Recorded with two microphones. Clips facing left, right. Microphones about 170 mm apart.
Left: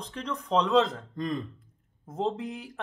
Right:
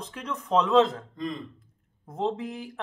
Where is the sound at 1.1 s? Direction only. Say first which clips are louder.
Left 2 dB; 50° left (ahead or behind).